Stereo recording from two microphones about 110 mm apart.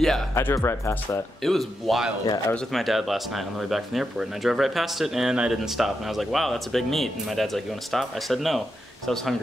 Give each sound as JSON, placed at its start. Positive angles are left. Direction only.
{"t": 0.3, "sound": "speech", "side_deg": 25}
{"t": 1.4, "sound": "speech", "side_deg": 0}
{"t": 2.2, "sound": "speech", "side_deg": 35}
{"t": 2.5, "sound": "speech", "side_deg": 0}